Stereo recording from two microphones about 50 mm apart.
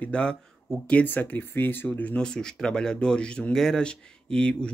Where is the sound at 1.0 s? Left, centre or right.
Left.